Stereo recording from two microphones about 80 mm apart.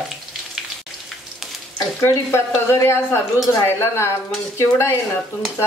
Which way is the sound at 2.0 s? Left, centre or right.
Left.